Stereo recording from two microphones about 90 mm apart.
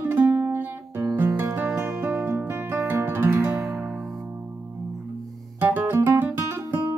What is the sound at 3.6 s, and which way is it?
Music, 5° right (ahead or behind).